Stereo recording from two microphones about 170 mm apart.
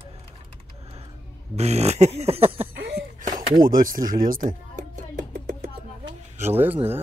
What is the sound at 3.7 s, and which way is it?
Music, 55° right (ahead or behind).